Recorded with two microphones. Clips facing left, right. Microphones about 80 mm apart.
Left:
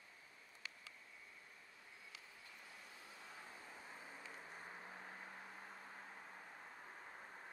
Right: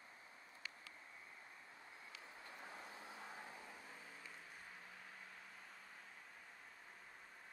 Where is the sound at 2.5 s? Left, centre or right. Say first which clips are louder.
Right 6 dB; right.